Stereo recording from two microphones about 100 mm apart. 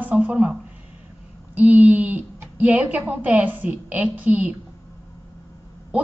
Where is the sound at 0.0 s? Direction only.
15° right (ahead or behind).